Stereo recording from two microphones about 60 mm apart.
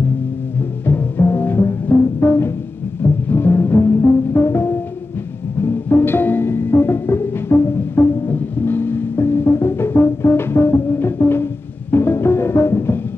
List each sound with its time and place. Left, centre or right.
0.8 s music: left
3.0 s timpani: left
5.6 s music: left